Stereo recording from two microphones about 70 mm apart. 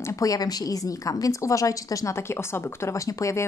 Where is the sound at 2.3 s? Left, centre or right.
Left.